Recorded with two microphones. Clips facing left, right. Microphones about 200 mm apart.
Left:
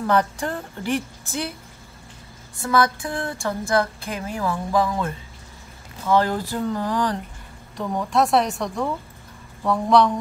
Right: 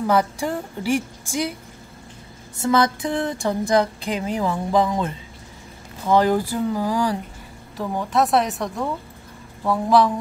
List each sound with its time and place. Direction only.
0.0 s a woman's voice: 10° right (ahead or behind)
2.6 s a woman's voice: 20° right (ahead or behind); by 10.1 s 5° right (ahead or behind)